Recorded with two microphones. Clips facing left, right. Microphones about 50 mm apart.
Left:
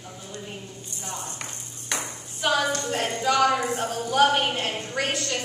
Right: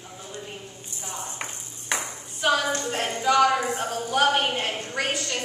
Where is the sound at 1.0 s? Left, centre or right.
Centre.